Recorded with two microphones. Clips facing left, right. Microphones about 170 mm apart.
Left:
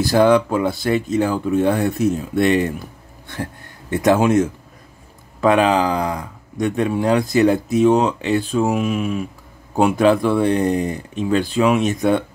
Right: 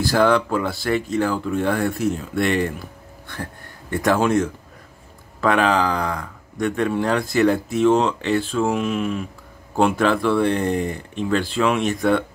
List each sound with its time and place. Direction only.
0.0 s speech: 20° left (ahead or behind)
3.9 s speech: 20° left (ahead or behind)